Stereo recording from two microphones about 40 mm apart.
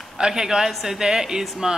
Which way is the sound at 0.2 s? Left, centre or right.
Centre.